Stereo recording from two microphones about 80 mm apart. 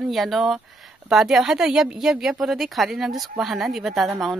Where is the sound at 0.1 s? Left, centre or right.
Centre.